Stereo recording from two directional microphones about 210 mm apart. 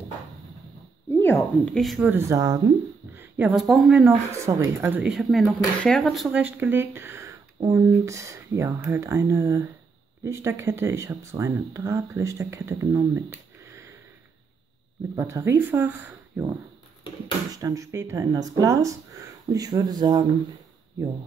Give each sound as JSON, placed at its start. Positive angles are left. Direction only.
{"t": 1.1, "sound": "speech", "side_deg": 10}
{"t": 1.8, "sound": "speech", "side_deg": 0}
{"t": 3.2, "sound": "a woman's voice", "side_deg": -5}
{"t": 4.5, "sound": "speech", "side_deg": -15}
{"t": 15.1, "sound": "speech", "side_deg": -15}